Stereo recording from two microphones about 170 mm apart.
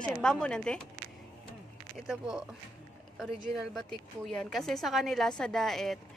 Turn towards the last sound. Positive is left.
turn(degrees=0)  # may be behind; listen again after turning